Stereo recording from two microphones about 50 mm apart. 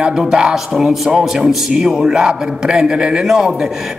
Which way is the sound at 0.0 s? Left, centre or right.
Centre.